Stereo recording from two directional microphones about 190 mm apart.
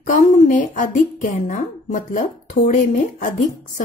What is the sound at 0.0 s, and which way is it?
Speech, 40° left (ahead or behind).